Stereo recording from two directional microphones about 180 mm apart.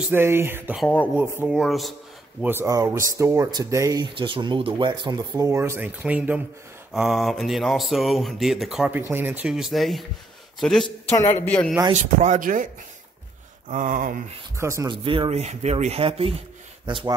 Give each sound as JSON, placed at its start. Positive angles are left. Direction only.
{"t": 0.1, "sound": "speech", "side_deg": -15}
{"t": 1.6, "sound": "speech", "side_deg": 0}
{"t": 2.4, "sound": "speech", "side_deg": -15}
{"t": 11.9, "sound": "speech", "side_deg": -45}
{"t": 13.7, "sound": "speech", "side_deg": -45}
{"t": 14.6, "sound": "speech", "side_deg": -15}
{"t": 15.0, "sound": "speech", "side_deg": -30}